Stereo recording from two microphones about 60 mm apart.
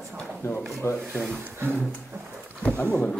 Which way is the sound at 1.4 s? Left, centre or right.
Right.